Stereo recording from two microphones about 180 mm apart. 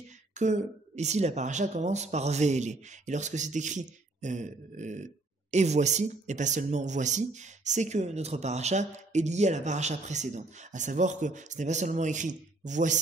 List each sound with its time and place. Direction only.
0.4 s speech: 40° right (ahead or behind)